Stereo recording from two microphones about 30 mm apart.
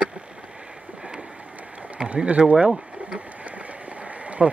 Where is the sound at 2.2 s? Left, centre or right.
Right.